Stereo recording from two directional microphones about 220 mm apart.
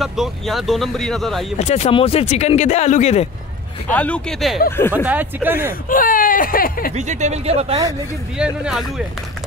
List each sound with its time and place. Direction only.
0.0 s speech: centre (ahead or behind)
1.6 s speech: 30° left (ahead or behind)
3.9 s speech: 5° left (ahead or behind); by 5.8 s 10° right (ahead or behind)
5.9 s speech: 40° left (ahead or behind)
7.0 s speech: 30° right (ahead or behind)
8.6 s speech: centre (ahead or behind)